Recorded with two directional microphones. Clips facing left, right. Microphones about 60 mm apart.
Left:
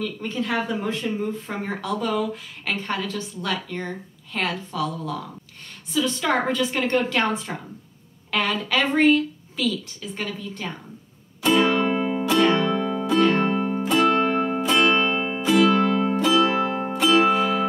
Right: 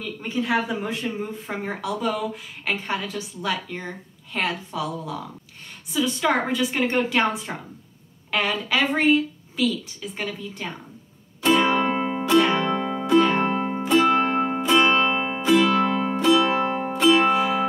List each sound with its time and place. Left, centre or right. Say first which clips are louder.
0.0 s a woman's voice: even; centre
11.4 s music: even; centre
12.6 s music: left 1 dB; centre
16.9 s music: even; centre